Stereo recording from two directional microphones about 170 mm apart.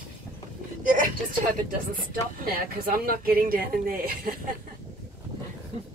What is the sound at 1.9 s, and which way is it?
Speech, 60° right (ahead or behind).